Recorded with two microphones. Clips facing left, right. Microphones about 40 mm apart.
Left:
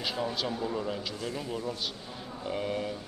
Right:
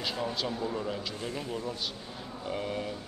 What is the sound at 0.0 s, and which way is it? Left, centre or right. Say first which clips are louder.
A man's voice: left 1 dB; centre.